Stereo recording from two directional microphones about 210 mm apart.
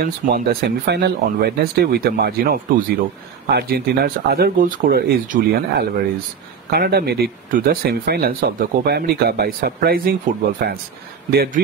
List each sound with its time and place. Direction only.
0.0 s speech: 45° right (ahead or behind)